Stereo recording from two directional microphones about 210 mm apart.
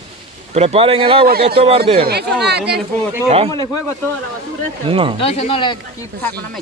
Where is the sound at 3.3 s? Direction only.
30° right (ahead or behind).